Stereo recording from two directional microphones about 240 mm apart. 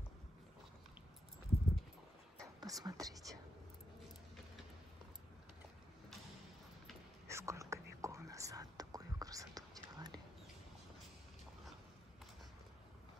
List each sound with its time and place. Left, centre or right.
2.6 s speech: centre
7.2 s whispering: centre